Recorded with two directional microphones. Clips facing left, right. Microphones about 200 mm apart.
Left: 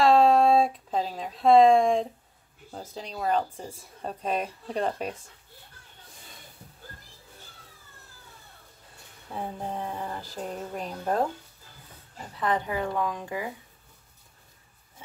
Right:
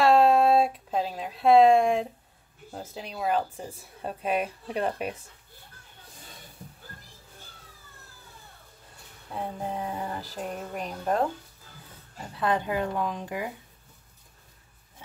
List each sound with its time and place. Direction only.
0.0 s a sound: 5° right (ahead or behind)
2.7 s a woman's voice: 5° right (ahead or behind)
9.3 s speech: centre (ahead or behind)
12.4 s a woman's voice: 15° right (ahead or behind)